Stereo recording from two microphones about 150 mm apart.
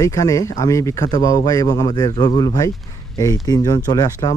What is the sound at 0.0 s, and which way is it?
Speech, 25° left (ahead or behind).